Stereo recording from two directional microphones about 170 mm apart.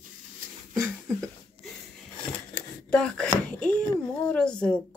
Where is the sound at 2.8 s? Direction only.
5° left (ahead or behind).